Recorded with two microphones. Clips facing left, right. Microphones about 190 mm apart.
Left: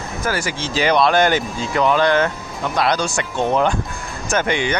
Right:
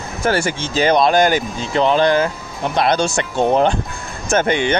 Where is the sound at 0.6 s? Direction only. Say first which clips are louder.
Even; 45° right (ahead or behind).